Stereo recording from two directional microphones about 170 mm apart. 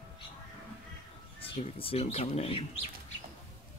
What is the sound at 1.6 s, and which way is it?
Speech, 35° left (ahead or behind).